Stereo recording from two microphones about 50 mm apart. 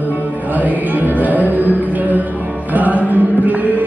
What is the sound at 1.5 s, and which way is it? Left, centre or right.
Music, right.